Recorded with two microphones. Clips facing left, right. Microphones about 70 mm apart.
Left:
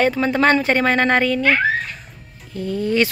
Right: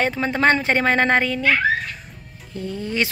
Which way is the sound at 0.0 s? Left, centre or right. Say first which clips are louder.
Left 3 dB; right.